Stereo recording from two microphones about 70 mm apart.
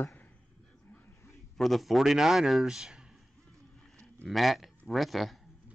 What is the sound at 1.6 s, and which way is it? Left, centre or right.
A man's voice, centre.